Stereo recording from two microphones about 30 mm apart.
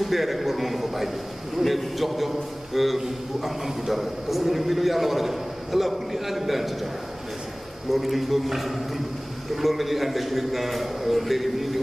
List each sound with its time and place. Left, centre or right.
0.0 s a man's voice: centre
7.9 s a man's voice: centre